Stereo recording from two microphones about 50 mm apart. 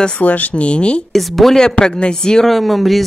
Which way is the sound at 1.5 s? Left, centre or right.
Centre.